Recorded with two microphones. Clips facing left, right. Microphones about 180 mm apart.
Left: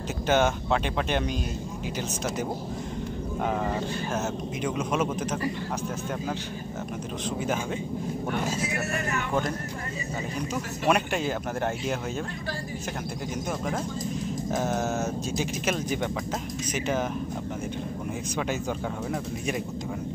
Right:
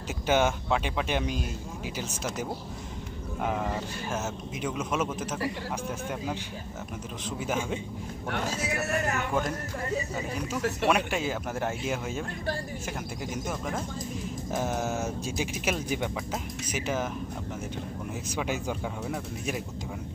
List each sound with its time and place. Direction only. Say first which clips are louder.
0.3 s speech: left 1 dB; 10° right (ahead or behind)
3.4 s a man's voice: left 2 dB; centre (ahead or behind)
10.9 s a man's voice: left 4 dB; centre (ahead or behind)
13.5 s a man's voice: left 5 dB; centre (ahead or behind)